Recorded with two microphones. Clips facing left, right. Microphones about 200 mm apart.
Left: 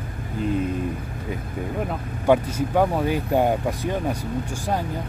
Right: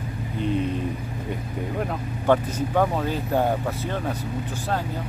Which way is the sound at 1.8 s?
10° left (ahead or behind).